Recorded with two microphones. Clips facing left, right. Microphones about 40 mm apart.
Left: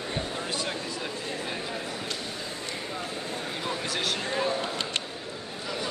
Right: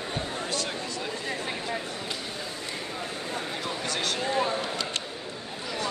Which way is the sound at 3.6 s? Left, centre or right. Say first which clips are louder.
Left 2 dB; centre.